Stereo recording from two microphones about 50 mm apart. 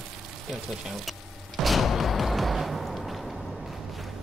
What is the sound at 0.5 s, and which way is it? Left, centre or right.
Speech, centre.